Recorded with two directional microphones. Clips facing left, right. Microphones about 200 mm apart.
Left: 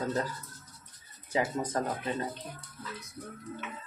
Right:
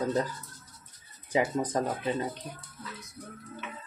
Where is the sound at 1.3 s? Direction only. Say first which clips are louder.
Right 3 dB; 20° right (ahead or behind).